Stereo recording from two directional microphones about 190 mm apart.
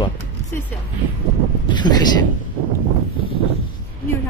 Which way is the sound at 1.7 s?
25° left (ahead or behind).